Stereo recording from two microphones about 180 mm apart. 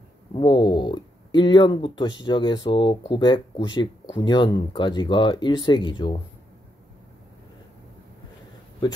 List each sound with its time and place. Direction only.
0.3 s speech: 30° left (ahead or behind)